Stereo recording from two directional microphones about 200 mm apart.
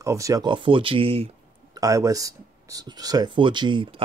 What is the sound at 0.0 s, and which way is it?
Speech, 15° right (ahead or behind).